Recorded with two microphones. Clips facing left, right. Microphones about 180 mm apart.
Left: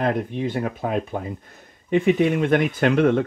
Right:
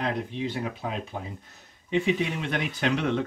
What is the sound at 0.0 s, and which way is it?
Speech, 50° left (ahead or behind).